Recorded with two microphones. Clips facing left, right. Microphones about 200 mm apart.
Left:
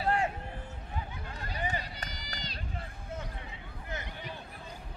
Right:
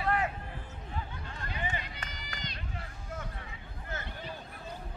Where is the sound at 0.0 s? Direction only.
30° left (ahead or behind).